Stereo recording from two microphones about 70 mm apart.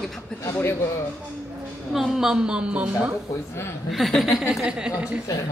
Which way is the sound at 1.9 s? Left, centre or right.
Centre.